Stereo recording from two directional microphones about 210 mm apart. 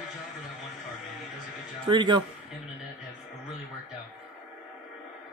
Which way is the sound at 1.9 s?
20° right (ahead or behind).